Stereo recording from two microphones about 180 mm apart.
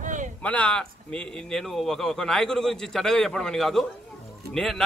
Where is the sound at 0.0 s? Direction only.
45° right (ahead or behind).